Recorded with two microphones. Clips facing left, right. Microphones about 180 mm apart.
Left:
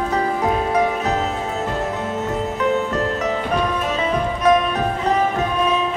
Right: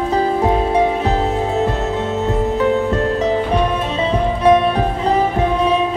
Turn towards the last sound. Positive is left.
turn(degrees=-30)  # may be behind; listen again after turning